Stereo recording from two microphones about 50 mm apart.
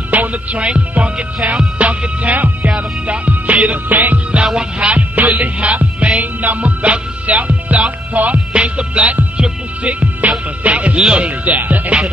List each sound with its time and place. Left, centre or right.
0.1 s music: right
4.6 s music: right
10.6 s speech: right